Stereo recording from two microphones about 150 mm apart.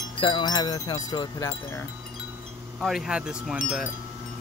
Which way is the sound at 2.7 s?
Centre (ahead or behind).